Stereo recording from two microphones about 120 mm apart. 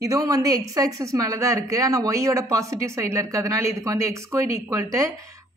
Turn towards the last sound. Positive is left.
turn(degrees=-25)  # may be behind; listen again after turning